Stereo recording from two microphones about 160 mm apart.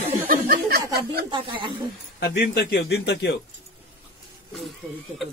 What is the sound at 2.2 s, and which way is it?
A man's voice, 85° left.